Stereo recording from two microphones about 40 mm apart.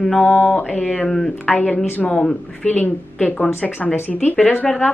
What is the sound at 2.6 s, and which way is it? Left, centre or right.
Speech, left.